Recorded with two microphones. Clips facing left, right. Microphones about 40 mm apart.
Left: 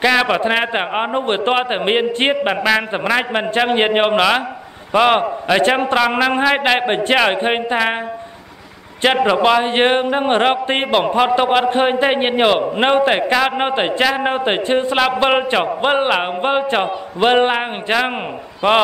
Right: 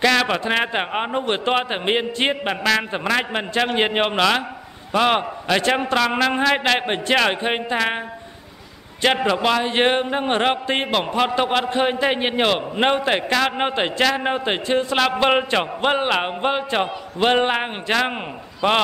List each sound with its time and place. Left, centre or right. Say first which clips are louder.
0.0 s a man's voice: left 4 dB; centre
1.2 s a man's voice: left 3 dB; left
9.0 s a man's voice: left 5 dB; centre
15.0 s a man's voice: left 1 dB; centre